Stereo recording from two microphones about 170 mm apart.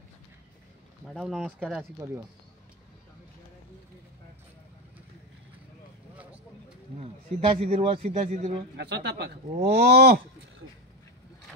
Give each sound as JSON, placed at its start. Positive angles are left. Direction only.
{"t": 1.0, "sound": "speech", "side_deg": 0}
{"t": 7.0, "sound": "a man's voice", "side_deg": -35}
{"t": 8.7, "sound": "speech", "side_deg": -85}